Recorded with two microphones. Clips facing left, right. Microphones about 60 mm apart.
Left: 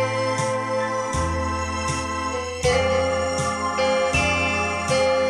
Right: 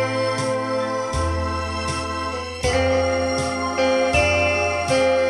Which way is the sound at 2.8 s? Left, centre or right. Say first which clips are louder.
Right 2 dB; centre.